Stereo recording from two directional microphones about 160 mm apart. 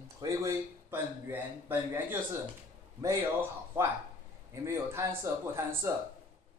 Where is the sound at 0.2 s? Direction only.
20° right (ahead or behind).